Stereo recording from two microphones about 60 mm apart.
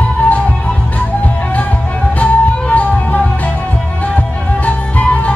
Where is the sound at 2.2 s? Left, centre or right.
Left.